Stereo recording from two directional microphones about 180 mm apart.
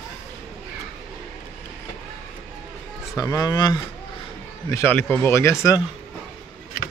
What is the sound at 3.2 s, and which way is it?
Speech, 20° left (ahead or behind).